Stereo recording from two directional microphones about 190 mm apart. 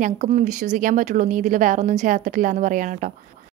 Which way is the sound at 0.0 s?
40° right (ahead or behind).